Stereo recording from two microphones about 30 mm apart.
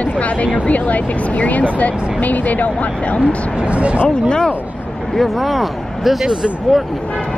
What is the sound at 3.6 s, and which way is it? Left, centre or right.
Speech, right.